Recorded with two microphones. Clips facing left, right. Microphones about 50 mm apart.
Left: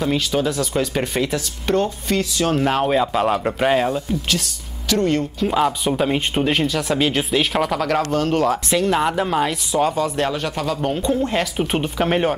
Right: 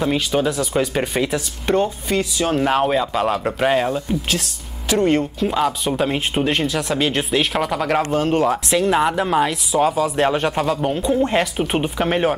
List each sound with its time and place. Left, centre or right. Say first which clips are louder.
0.0 s speech: right 1 dB; centre
4.8 s speech: right 2 dB; centre
5.5 s speech: left 3 dB; centre
7.8 s speech: right 1 dB; centre
10.2 s speech: right 4 dB; right
10.7 s speech: right 1 dB; centre